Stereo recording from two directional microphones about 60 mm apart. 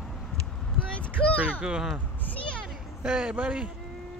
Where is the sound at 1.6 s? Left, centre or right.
Centre.